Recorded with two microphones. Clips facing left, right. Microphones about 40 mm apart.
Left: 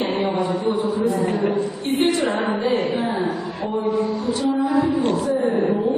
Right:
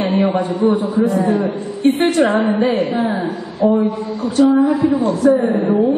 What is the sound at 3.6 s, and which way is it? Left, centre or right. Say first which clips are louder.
Speech: right 12 dB; right.